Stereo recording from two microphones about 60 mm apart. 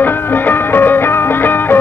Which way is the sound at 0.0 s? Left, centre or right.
Left.